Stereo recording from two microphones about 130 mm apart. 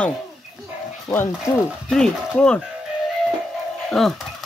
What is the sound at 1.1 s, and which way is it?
Speech, 20° left (ahead or behind).